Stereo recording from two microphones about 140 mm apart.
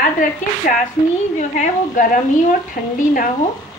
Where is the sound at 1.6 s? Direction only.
70° left (ahead or behind).